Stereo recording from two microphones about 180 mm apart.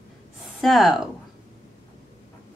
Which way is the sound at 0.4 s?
Centre (ahead or behind).